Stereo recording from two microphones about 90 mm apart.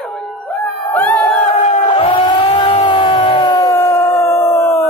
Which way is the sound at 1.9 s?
75° left (ahead or behind).